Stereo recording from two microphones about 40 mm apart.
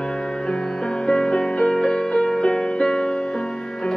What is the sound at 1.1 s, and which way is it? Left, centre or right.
Music, centre.